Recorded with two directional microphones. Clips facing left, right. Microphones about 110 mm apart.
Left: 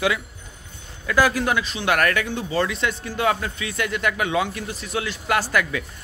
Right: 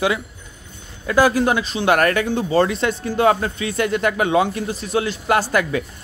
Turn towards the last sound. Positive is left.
turn(degrees=-30)  # may be behind; listen again after turning